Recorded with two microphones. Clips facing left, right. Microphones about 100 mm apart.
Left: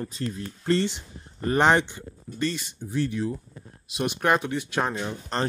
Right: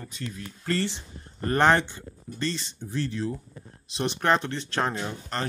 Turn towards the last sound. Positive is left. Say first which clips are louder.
# left 4 dB
turn(degrees=30)  # may be behind; listen again after turning